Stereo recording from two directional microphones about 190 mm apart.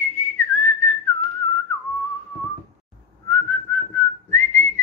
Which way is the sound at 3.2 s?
10° left (ahead or behind).